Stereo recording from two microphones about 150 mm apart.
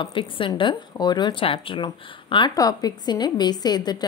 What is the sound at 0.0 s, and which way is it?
A woman's voice, 30° left (ahead or behind).